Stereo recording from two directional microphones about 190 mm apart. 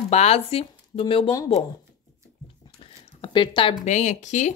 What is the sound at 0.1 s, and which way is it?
Speech, 35° left (ahead or behind).